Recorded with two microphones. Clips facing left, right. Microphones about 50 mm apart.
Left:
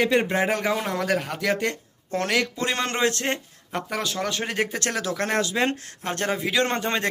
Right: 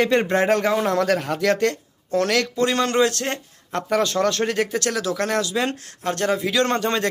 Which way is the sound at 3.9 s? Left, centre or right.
Centre.